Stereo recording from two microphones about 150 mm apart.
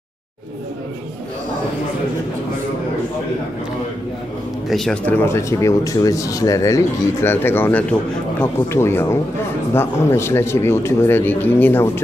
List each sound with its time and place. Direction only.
4.6 s speech: centre (ahead or behind)
5.1 s speech: 15° left (ahead or behind)